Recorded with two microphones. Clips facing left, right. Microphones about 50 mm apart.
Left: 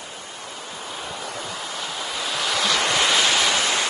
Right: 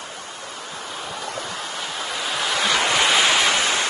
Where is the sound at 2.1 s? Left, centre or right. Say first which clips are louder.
Right 1 dB; centre.